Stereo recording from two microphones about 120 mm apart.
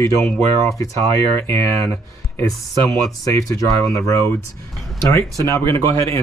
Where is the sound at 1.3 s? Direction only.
20° left (ahead or behind).